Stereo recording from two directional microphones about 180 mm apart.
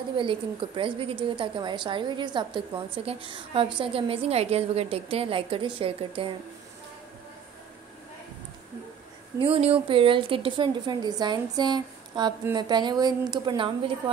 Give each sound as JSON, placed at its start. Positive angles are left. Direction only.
{"t": 0.2, "sound": "a woman's voice", "side_deg": -30}
{"t": 9.4, "sound": "a woman's voice", "side_deg": -30}